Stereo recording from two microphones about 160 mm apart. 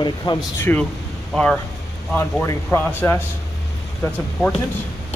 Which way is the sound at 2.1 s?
15° left (ahead or behind).